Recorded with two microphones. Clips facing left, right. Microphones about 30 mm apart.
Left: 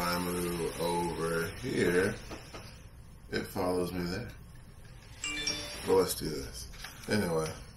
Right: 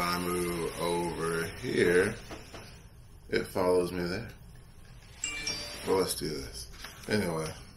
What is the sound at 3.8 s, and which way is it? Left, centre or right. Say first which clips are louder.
Speech: right 4 dB; right.